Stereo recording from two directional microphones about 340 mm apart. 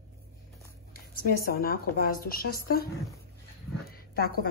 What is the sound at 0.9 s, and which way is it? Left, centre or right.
Speech, left.